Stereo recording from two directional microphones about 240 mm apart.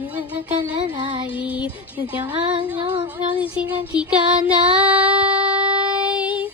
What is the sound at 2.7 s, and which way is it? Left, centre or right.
Child singing, centre.